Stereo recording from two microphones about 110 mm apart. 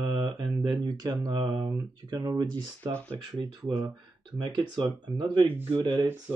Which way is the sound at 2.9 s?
10° left (ahead or behind).